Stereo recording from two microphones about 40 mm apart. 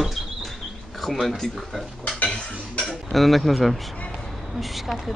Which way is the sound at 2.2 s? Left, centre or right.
Left.